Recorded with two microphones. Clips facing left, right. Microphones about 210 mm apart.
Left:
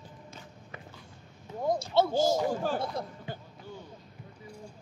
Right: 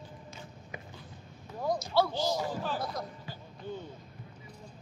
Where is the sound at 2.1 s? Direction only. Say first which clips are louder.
Left 6 dB; 45° left (ahead or behind).